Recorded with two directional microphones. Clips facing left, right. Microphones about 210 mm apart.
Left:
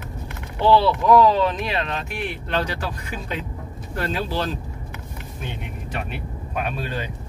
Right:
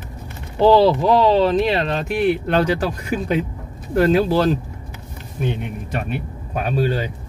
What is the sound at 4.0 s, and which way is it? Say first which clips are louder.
Speech: right 10 dB; 40° right (ahead or behind).